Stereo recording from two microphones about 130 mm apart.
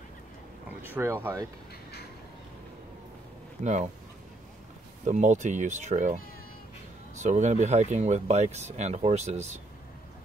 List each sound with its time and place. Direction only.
0.7 s speech: 15° right (ahead or behind)
3.6 s speech: 60° right (ahead or behind)
5.0 s speech: 65° right (ahead or behind)
7.2 s speech: 65° right (ahead or behind)